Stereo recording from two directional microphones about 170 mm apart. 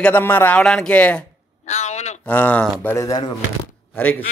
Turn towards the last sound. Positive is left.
turn(degrees=10)  # may be behind; listen again after turning